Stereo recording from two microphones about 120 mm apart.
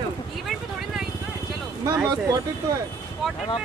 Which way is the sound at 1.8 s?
25° right (ahead or behind).